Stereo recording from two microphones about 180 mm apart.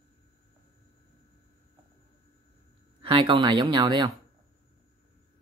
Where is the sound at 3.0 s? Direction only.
25° right (ahead or behind).